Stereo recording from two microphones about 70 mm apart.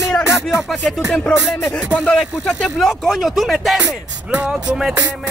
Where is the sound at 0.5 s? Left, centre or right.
Centre.